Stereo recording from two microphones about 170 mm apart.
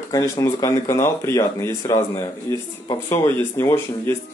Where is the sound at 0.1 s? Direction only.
20° left (ahead or behind).